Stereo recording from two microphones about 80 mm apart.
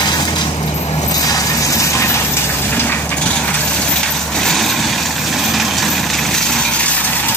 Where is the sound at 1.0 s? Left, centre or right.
Left.